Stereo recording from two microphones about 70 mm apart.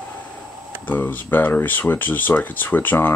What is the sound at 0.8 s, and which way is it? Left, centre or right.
Speech, left.